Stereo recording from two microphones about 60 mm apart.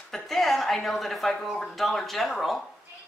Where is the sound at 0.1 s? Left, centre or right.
Centre.